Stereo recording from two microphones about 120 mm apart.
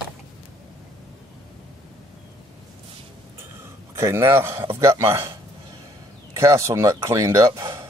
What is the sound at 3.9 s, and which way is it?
A man's voice, 20° right (ahead or behind).